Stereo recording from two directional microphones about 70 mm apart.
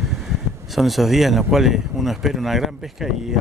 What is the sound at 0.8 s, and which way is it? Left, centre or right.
Speech, centre.